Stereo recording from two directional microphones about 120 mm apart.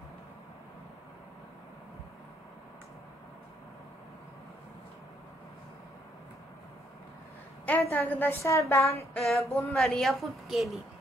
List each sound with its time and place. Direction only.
7.8 s a woman's voice: 15° left (ahead or behind)
9.1 s a woman's voice: centre (ahead or behind)